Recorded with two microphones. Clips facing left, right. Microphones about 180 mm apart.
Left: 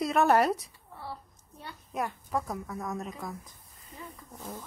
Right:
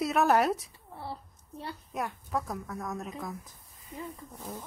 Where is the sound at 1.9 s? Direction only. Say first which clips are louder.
Left 2 dB; centre (ahead or behind).